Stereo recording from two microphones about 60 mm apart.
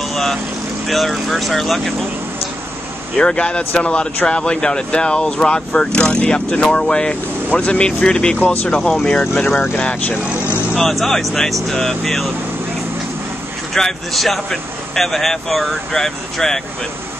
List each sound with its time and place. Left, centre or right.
0.1 s vehicle: centre
0.8 s speech: centre
3.2 s speech: centre
10.8 s speech: centre
13.7 s speech: centre